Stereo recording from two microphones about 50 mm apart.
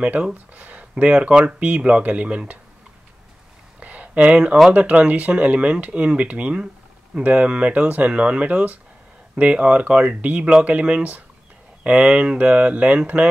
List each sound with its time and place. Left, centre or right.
0.0 s speech: right
3.8 s a sound: right
4.7 s speech: right